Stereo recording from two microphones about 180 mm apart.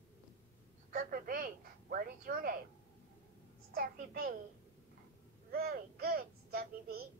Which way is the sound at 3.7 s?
55° right (ahead or behind).